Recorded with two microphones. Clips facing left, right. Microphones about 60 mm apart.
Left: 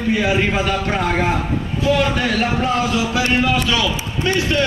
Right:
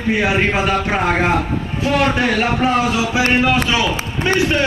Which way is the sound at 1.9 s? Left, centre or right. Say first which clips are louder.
Left 1 dB; right.